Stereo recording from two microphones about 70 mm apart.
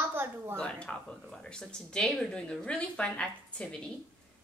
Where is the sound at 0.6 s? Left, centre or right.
Centre.